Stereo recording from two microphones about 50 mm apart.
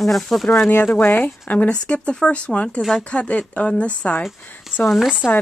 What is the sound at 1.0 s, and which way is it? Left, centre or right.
Speech, left.